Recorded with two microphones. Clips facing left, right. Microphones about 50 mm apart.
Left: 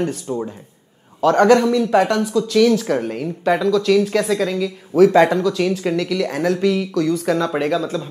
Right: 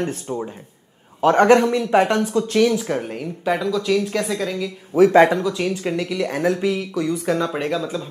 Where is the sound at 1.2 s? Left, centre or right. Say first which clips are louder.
Left 1 dB; right.